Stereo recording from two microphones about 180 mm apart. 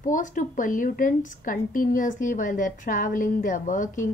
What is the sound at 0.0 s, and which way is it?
A woman's voice, 45° left (ahead or behind).